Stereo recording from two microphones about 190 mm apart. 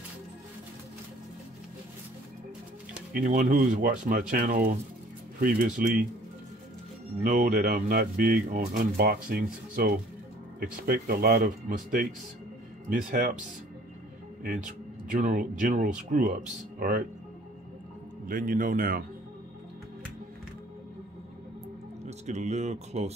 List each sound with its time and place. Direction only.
3.1 s speech: 50° right (ahead or behind)
7.2 s speech: 50° right (ahead or behind)
15.0 s speech: 45° right (ahead or behind)
18.2 s speech: 45° right (ahead or behind)
22.0 s speech: 40° right (ahead or behind)